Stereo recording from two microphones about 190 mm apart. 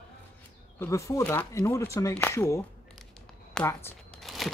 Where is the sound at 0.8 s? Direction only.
15° left (ahead or behind).